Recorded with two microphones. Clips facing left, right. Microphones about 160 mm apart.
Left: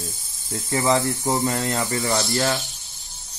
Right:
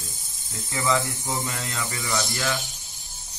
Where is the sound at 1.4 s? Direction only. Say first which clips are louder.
Left 8 dB; 45° left (ahead or behind).